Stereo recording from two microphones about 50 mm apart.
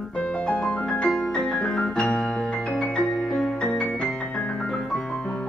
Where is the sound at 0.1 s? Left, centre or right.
Centre.